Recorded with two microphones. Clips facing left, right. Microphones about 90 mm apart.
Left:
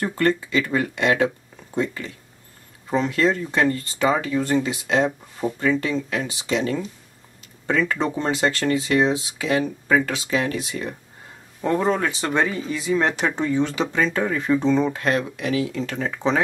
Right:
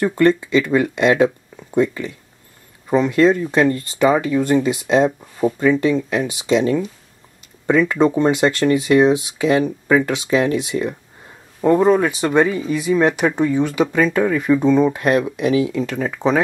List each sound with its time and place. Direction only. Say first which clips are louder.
0.0 s speech: right 6 dB; 20° right (ahead or behind)